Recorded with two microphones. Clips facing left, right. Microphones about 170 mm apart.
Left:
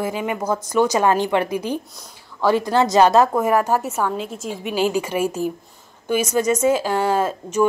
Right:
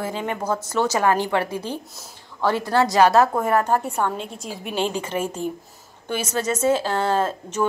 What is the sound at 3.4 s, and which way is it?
A woman's voice, 10° left (ahead or behind).